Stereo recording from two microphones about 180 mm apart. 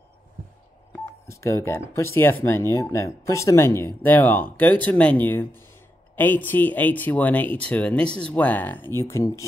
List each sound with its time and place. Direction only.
1.2 s speech: 15° left (ahead or behind)